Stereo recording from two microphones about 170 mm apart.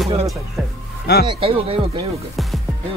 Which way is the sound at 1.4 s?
35° right (ahead or behind).